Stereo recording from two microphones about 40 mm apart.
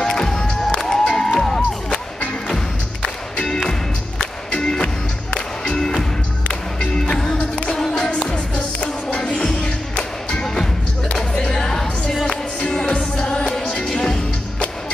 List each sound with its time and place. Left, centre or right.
0.0 s cheering: centre
0.7 s a sound: centre
1.4 s music: centre
3.4 s music: centre; by 10.4 s left
10.4 s music: centre
12.8 s music: left